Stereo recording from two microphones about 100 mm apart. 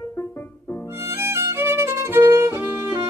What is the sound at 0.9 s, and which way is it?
Violin, 25° right (ahead or behind).